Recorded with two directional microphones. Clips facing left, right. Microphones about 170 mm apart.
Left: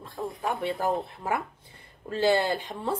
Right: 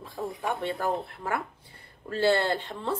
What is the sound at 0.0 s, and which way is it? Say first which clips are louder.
Speech: even; centre (ahead or behind).